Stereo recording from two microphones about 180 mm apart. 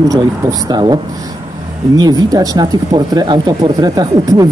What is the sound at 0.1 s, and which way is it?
Speech, 20° right (ahead or behind).